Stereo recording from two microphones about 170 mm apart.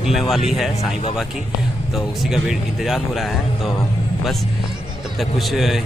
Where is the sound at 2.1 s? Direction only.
Centre (ahead or behind).